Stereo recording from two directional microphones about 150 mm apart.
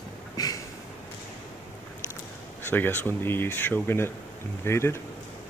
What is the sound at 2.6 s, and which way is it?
Speech, 15° left (ahead or behind).